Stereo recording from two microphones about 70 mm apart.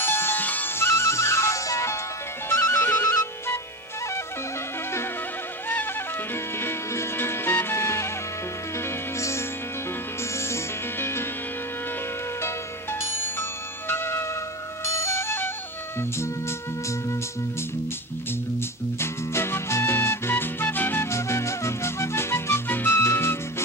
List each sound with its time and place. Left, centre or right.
0.0 s music: left
2.5 s music: left
6.6 s music: left
10.5 s music: left
13.0 s music: left
18.9 s music: left
21.1 s music: left